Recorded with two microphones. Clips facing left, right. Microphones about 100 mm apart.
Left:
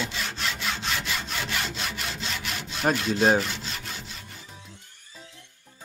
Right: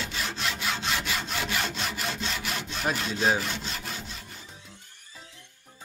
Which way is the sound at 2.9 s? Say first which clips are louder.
Left 5 dB; 40° left (ahead or behind).